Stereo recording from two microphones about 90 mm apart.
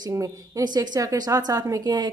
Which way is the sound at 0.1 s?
40° right (ahead or behind).